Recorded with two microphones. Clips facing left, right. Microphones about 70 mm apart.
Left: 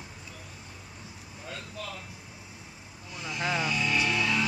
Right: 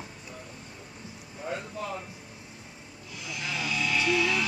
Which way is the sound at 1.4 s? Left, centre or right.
Right.